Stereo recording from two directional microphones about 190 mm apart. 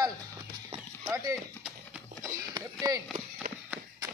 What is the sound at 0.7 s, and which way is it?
Clip-clop, 15° right (ahead or behind).